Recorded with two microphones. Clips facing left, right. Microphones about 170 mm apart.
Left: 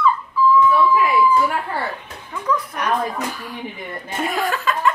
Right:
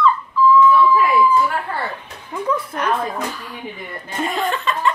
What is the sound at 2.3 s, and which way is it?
Speech, 25° right (ahead or behind).